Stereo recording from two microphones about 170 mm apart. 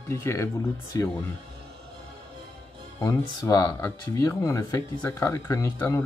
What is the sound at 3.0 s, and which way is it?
Speech, 20° left (ahead or behind).